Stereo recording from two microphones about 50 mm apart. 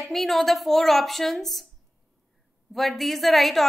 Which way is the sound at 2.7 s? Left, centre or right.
Centre.